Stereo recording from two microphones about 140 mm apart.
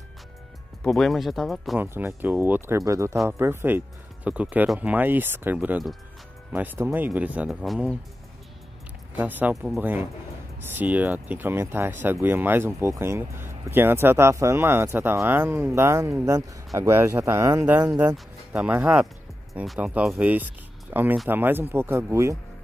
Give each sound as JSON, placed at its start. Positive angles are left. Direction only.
{"t": 0.8, "sound": "speech", "side_deg": 0}
{"t": 1.8, "sound": "speech", "side_deg": -15}
{"t": 9.1, "sound": "speech", "side_deg": -10}
{"t": 18.1, "sound": "speech", "side_deg": -10}